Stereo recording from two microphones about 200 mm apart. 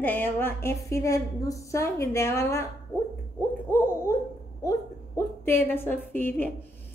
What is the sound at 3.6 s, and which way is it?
Hoot, 10° left (ahead or behind).